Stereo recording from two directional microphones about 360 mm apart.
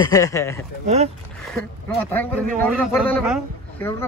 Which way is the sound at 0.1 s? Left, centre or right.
Centre.